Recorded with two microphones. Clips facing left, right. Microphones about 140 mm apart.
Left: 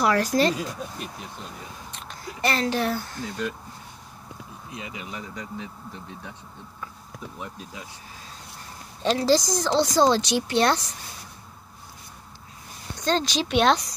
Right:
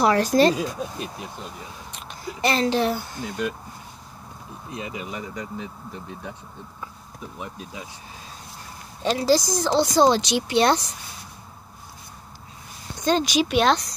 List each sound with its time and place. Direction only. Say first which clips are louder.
0.0 s speech: right 4 dB; 25° right (ahead or behind)
1.9 s a sound: right 3 dB; 15° right (ahead or behind)
3.0 s speech: right 2 dB; 10° right (ahead or behind)
4.7 s speech: right 5 dB; 35° right (ahead or behind)
5.1 s speech: right 3 dB; 5° right (ahead or behind)
7.3 s speech: right 4 dB; 15° right (ahead or behind)
9.0 s speech: right 1 dB; 5° right (ahead or behind)
13.0 s speech: right 4 dB; 10° right (ahead or behind)